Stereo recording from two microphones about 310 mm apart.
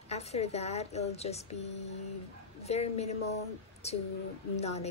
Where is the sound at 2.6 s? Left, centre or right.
Left.